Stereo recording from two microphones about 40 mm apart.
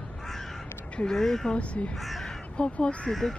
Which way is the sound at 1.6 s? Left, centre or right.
Left.